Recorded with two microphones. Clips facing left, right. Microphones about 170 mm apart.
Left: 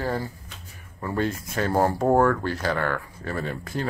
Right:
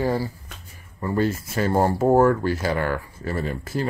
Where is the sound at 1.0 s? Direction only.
5° right (ahead or behind).